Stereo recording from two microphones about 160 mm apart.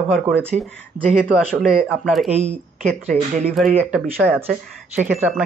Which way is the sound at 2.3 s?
45° right (ahead or behind).